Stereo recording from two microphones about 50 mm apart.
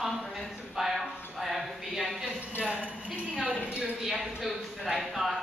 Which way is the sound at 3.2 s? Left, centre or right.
Left.